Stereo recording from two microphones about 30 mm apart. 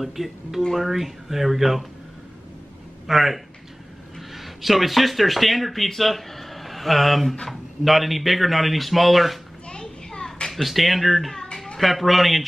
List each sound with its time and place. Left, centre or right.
0.0 s speech: centre
3.1 s speech: centre
9.7 s a sound: left
10.5 s speech: centre